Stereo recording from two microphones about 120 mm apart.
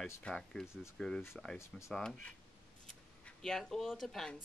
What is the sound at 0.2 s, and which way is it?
Speech, 5° left (ahead or behind).